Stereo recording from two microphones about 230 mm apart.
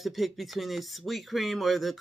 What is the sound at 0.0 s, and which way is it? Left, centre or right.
Speech, centre.